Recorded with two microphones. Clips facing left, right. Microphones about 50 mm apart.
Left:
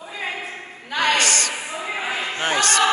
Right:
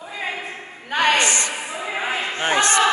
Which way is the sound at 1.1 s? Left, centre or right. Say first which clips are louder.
Right 1 dB; right.